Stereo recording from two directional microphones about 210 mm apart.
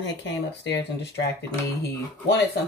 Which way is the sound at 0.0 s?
55° left (ahead or behind).